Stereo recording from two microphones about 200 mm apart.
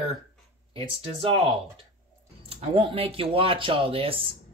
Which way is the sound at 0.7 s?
30° right (ahead or behind).